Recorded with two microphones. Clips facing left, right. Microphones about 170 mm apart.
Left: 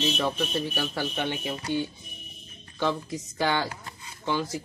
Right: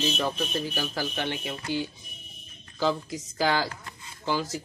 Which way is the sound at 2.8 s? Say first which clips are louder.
Right 1 dB; 5° right (ahead or behind).